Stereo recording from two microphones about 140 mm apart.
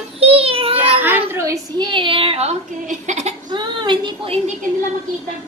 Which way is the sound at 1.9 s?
35° right (ahead or behind).